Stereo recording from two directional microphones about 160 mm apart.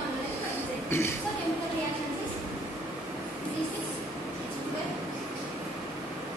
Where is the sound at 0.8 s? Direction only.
15° left (ahead or behind).